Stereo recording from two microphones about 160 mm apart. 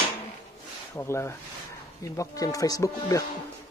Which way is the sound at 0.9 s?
15° left (ahead or behind).